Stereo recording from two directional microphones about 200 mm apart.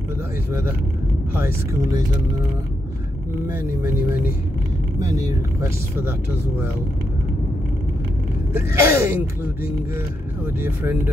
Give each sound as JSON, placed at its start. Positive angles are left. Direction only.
{"t": 0.5, "sound": "speech", "side_deg": -10}
{"t": 3.4, "sound": "speech", "side_deg": -10}
{"t": 5.6, "sound": "speech", "side_deg": -10}
{"t": 8.5, "sound": "speech", "side_deg": -10}